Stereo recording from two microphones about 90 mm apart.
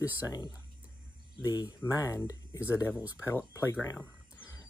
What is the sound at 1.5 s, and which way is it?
Speech, 40° left (ahead or behind).